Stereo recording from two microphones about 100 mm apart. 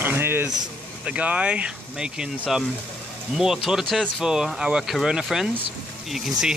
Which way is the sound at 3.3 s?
5° right (ahead or behind).